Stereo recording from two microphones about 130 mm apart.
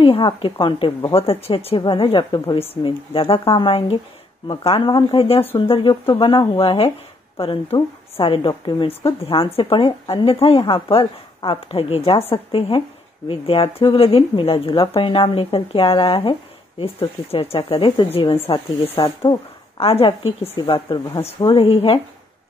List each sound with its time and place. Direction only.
0.0 s speech: 40° left (ahead or behind)
18.9 s speech: 30° left (ahead or behind)
19.8 s speech: 45° left (ahead or behind)
20.6 s speech: 35° left (ahead or behind)
21.5 s speech: 45° left (ahead or behind)